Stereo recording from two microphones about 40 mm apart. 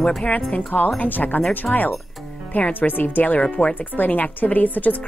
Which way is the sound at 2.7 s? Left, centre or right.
Left.